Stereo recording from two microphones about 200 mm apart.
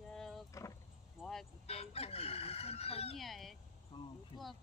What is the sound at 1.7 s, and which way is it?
Chicken, 30° left (ahead or behind).